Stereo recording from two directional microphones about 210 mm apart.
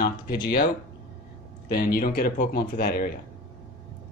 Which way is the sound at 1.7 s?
45° left (ahead or behind).